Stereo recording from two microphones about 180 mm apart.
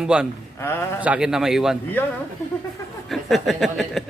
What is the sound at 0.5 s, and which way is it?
Speech, 15° left (ahead or behind).